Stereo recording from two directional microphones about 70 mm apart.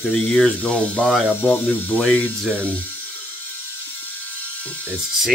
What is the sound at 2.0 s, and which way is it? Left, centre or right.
Speech, centre.